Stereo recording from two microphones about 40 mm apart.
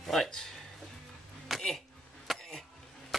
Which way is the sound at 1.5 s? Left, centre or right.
Centre.